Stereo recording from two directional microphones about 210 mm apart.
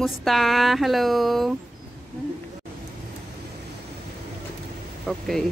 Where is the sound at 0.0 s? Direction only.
Centre (ahead or behind).